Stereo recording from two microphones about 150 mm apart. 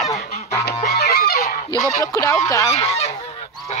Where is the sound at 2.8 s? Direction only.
45° left (ahead or behind).